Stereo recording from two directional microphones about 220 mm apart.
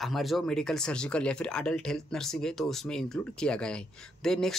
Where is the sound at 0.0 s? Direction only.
Centre (ahead or behind).